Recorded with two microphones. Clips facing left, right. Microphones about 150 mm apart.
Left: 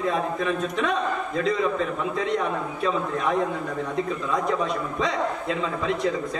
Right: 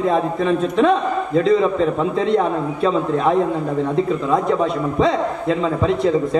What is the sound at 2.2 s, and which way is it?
A man's voice, 30° right (ahead or behind).